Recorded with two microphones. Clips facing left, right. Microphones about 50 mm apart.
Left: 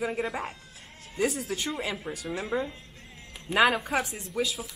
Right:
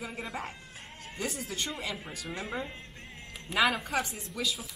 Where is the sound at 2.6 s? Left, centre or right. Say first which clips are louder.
Left 2 dB; right.